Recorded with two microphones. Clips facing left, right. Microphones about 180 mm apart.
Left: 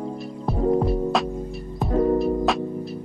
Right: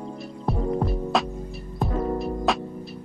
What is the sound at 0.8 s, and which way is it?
Music, centre (ahead or behind).